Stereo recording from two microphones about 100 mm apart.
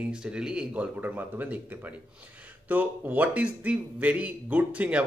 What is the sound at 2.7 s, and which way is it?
A man's voice, 15° right (ahead or behind).